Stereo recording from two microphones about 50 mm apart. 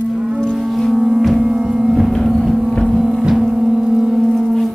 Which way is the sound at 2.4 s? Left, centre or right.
Centre.